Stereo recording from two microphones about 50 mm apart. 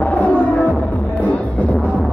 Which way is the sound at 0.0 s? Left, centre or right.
Left.